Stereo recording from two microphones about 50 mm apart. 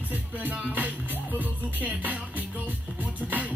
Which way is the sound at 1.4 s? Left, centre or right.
Right.